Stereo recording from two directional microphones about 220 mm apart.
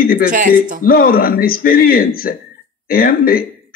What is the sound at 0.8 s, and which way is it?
A man's voice, 40° left (ahead or behind).